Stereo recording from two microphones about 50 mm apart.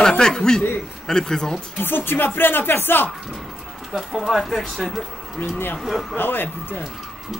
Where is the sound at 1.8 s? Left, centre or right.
Left.